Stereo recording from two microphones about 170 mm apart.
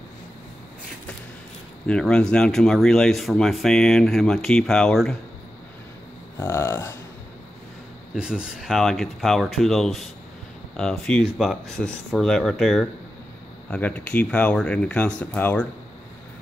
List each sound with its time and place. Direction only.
1.9 s speech: 5° left (ahead or behind)
6.4 s speech: 15° left (ahead or behind)
8.1 s speech: 5° right (ahead or behind)